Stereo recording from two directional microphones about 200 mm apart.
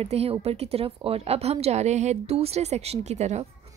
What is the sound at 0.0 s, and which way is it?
A woman's voice, 30° right (ahead or behind).